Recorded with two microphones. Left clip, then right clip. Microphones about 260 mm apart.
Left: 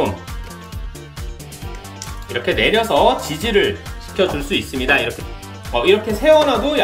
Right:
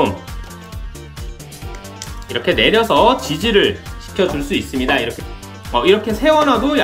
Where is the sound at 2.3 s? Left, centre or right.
Centre.